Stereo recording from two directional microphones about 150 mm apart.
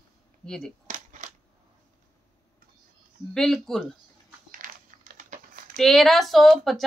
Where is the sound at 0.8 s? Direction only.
60° right (ahead or behind).